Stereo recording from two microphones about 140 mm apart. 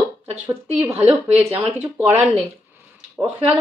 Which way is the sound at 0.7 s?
15° right (ahead or behind).